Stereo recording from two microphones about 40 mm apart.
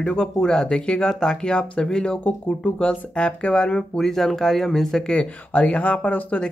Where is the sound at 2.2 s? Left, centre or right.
Left.